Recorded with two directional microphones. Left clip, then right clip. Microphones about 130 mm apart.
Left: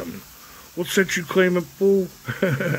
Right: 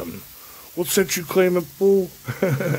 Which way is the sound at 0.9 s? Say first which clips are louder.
Even; 10° right (ahead or behind).